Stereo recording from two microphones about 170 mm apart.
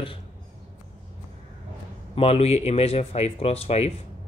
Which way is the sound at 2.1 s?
35° left (ahead or behind).